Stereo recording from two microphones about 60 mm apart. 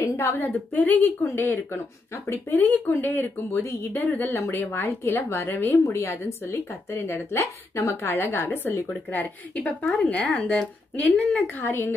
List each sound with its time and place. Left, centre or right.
0.2 s a woman's voice: left
0.7 s speech: left
5.9 s a woman's voice: left
9.6 s speech: centre; by 11.9 s left